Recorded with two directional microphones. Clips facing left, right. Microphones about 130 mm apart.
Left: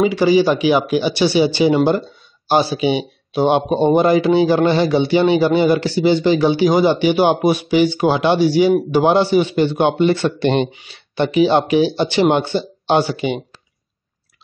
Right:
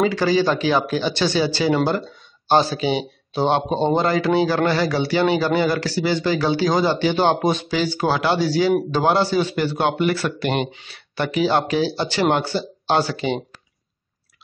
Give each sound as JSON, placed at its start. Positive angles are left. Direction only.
{"t": 0.0, "sound": "a man's voice", "side_deg": 15}
{"t": 10.7, "sound": "speech", "side_deg": 20}